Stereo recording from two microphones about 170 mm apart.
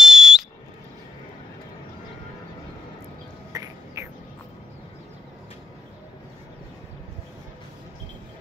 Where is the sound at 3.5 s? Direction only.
20° right (ahead or behind).